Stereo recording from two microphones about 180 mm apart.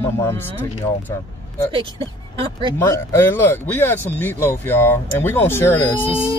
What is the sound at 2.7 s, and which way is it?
Speech, 15° left (ahead or behind).